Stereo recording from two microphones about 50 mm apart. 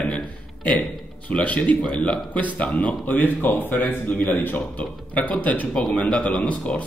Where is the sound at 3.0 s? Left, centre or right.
Left.